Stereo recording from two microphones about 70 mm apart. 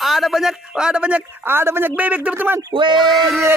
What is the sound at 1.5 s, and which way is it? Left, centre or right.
A man's voice, right.